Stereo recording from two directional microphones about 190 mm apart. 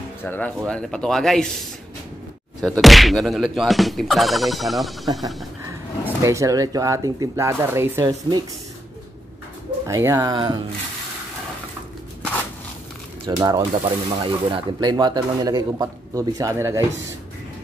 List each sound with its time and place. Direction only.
0.2 s speech: 10° left (ahead or behind)
0.7 s fowl: 5° left (ahead or behind)
2.6 s fowl: centre (ahead or behind)
6.2 s speech: 15° right (ahead or behind)
9.8 s speech: 15° right (ahead or behind)
10.3 s speech: 25° right (ahead or behind)
13.4 s speech: 25° right (ahead or behind)